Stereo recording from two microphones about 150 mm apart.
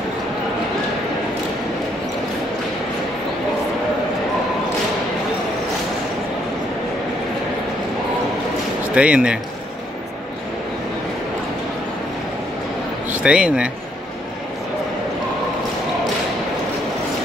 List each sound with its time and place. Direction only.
8.9 s speech: 5° right (ahead or behind)
13.2 s speech: 5° right (ahead or behind)